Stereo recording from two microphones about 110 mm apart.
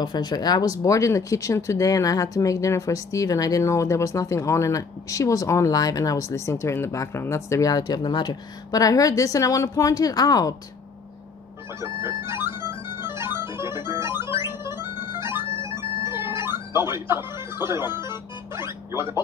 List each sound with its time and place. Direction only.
0.0 s speech: 40° left (ahead or behind)
11.8 s speech: 25° right (ahead or behind)
13.0 s music: 20° right (ahead or behind)
18.6 s speech: 25° right (ahead or behind)